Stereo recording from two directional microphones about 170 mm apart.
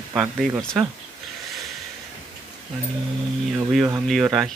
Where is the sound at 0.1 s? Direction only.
5° right (ahead or behind).